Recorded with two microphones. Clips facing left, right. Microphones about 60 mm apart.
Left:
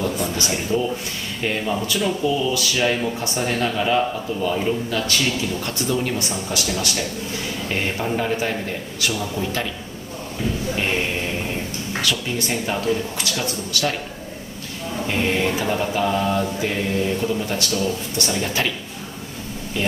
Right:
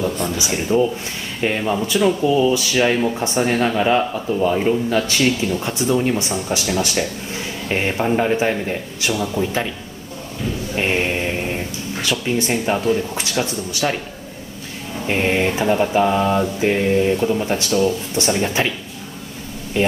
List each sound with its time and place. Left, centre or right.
0.4 s speech: centre
9.2 s a man's voice: centre
10.8 s mantra: right
12.0 s speech: right
15.0 s speech: right